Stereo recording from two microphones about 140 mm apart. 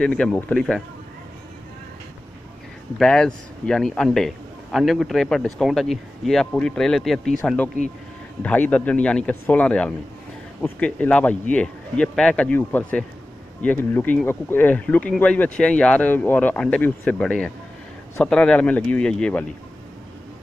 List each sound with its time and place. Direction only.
0.0 s speech: 5° left (ahead or behind)
3.0 s speech: 5° left (ahead or behind)